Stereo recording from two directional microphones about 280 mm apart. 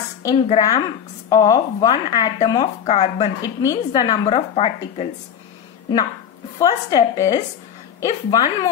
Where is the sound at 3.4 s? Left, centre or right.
Centre.